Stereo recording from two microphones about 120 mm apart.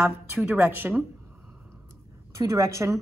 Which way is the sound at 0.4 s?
10° right (ahead or behind).